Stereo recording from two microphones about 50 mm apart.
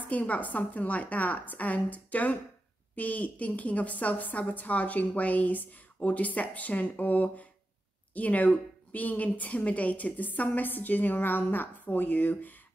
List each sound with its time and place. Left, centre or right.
0.0 s a woman's voice: left